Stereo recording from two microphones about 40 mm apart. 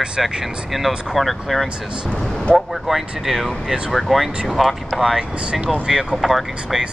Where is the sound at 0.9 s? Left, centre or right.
Right.